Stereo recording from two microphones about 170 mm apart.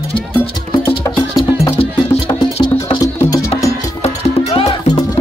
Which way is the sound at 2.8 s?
25° left (ahead or behind).